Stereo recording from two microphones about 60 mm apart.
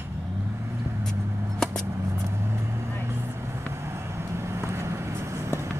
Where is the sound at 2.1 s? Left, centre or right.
Right.